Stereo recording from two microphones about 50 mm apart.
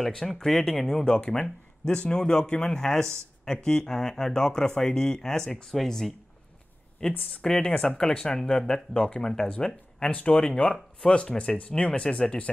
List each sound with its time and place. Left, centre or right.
0.0 s speech: centre
10.1 s speech: left
11.0 s speech: centre